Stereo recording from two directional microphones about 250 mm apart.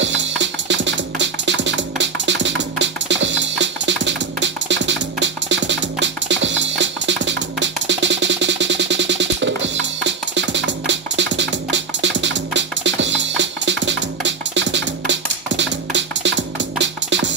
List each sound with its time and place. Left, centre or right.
0.0 s music: right